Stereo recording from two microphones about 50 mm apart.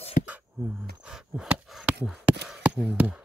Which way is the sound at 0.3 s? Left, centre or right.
Right.